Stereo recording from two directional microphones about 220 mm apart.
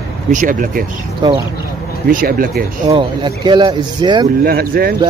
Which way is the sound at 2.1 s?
40° right (ahead or behind).